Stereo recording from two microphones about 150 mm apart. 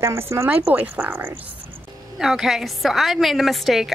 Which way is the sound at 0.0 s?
20° right (ahead or behind).